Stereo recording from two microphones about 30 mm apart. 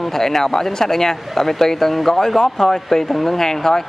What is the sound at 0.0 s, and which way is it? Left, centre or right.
Speech, centre.